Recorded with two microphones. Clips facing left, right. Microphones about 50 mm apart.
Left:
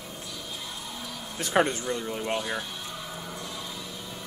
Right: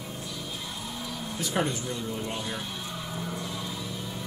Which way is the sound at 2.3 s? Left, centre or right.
Centre.